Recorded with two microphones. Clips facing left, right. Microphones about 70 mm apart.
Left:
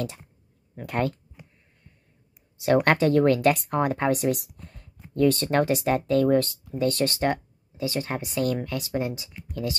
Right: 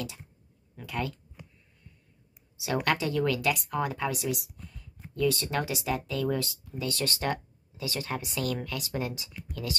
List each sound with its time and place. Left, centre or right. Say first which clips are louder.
0.7 s speech: left 7 dB; left
2.6 s speech: left 8 dB; left